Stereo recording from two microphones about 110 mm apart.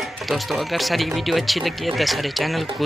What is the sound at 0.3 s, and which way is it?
Speech, centre (ahead or behind).